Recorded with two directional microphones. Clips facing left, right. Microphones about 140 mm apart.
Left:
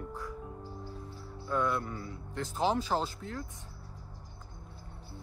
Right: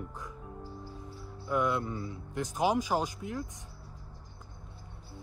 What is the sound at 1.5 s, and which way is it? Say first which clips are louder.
Speech: right 2 dB; 20° right (ahead or behind).